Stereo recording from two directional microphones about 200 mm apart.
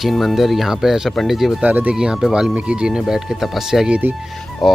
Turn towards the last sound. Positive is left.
turn(degrees=0)  # may be behind; listen again after turning